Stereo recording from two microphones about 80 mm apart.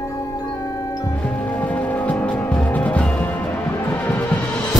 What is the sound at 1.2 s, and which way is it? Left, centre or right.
Music, centre.